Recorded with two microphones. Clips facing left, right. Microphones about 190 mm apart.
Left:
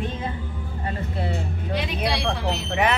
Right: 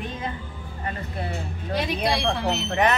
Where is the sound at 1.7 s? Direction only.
40° right (ahead or behind).